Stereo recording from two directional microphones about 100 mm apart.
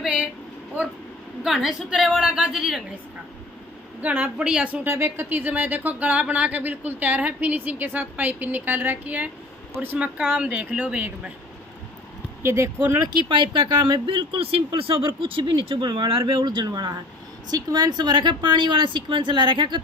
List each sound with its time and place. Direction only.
0.0 s a sound: 10° right (ahead or behind)
1.4 s a woman's voice: 5° right (ahead or behind)
4.0 s speech: 15° right (ahead or behind)
4.8 s speech: 25° right (ahead or behind)
12.4 s speech: 25° right (ahead or behind)
13.1 s speech: 55° right (ahead or behind)